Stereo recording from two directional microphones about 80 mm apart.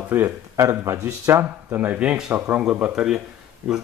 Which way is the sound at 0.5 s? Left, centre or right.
Right.